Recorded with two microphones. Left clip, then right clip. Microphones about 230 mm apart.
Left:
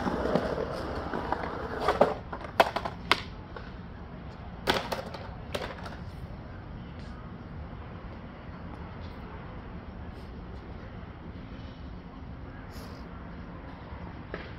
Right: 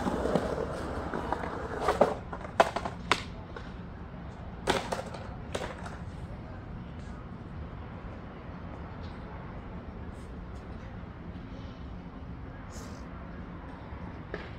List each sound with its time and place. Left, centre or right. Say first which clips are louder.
0.0 s fireworks: left 1 dB; centre; by 3.2 s left
4.6 s typewriter: left 1 dB; left